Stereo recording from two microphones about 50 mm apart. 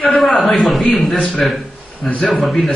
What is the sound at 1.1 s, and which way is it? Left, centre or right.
A man's voice, centre.